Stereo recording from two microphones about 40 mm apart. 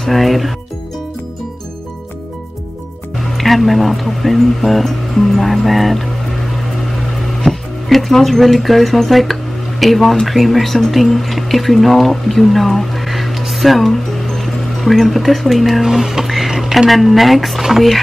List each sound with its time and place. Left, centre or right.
0.0 s speech: centre
3.3 s speech: centre
7.4 s speech: centre
14.1 s music: centre
16.7 s speech: centre